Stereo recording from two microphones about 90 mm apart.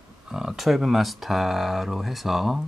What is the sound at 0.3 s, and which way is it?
Speech, 5° right (ahead or behind).